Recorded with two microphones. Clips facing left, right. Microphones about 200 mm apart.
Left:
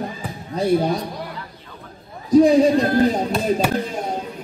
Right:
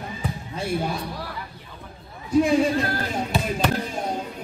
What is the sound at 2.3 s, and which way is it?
A man's voice, 35° left (ahead or behind).